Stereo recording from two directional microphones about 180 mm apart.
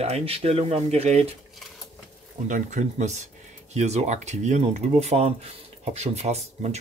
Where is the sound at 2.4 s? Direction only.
45° right (ahead or behind).